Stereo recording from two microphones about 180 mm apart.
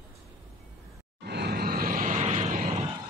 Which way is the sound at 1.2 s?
65° right (ahead or behind).